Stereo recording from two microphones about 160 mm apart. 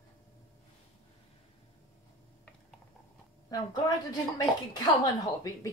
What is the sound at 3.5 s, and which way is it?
Speech, 25° left (ahead or behind).